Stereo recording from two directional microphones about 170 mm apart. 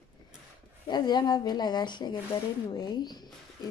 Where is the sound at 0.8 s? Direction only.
25° left (ahead or behind).